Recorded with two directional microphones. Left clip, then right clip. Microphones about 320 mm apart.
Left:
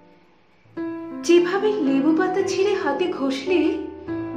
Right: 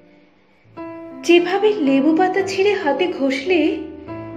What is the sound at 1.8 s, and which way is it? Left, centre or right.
Speech, left.